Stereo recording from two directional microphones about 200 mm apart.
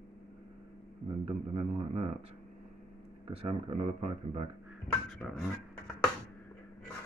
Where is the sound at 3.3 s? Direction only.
30° right (ahead or behind).